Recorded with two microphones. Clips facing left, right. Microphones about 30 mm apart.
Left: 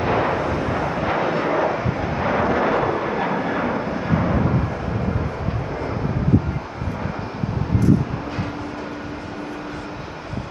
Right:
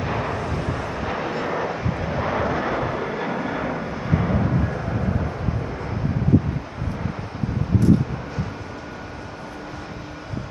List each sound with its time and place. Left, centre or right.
0.0 s artillery fire: centre